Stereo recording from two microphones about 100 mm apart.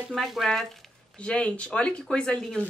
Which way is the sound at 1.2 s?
10° left (ahead or behind).